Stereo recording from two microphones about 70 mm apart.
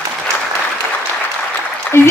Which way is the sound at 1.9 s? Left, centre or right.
Left.